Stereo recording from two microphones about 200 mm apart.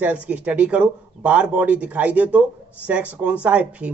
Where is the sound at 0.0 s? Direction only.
5° right (ahead or behind).